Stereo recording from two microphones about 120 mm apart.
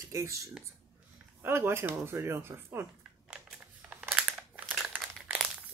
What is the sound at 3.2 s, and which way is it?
Crumpling, 10° right (ahead or behind).